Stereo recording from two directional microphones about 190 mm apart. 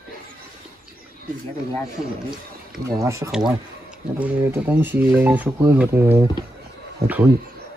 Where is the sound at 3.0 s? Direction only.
15° right (ahead or behind).